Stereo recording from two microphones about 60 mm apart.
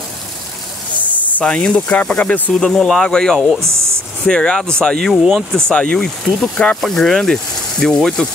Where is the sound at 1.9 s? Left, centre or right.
Centre.